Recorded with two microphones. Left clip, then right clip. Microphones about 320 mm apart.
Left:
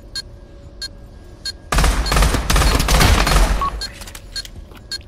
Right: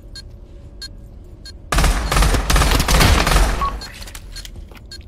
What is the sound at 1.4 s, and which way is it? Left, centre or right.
Fusillade, centre.